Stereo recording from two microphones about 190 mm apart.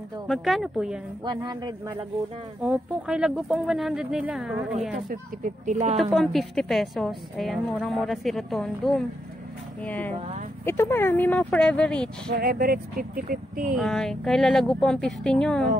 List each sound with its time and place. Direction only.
0.3 s a woman's voice: centre (ahead or behind)
1.2 s speech: 20° right (ahead or behind)
2.6 s a woman's voice: 5° right (ahead or behind)
5.4 s speech: 40° right (ahead or behind)
5.9 s a woman's voice: centre (ahead or behind)
12.3 s speech: 50° right (ahead or behind)
13.7 s a woman's voice: centre (ahead or behind)